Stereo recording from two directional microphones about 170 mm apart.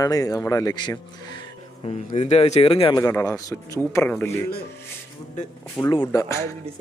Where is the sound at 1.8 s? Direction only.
40° left (ahead or behind).